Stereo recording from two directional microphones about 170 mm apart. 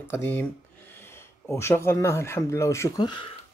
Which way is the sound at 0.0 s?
15° left (ahead or behind).